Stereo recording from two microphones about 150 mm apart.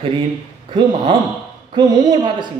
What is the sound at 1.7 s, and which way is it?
Speech, 30° right (ahead or behind).